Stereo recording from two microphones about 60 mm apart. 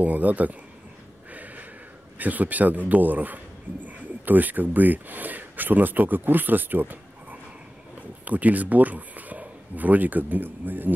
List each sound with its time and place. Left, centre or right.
0.0 s a man's voice: right
1.3 s a sound: right
2.1 s a man's voice: right